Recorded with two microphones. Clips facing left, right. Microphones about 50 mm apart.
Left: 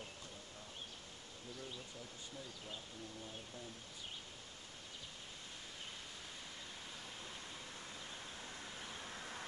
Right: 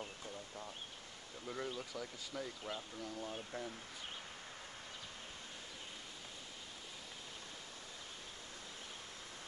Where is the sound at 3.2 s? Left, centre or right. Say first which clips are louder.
Right 7 dB; right.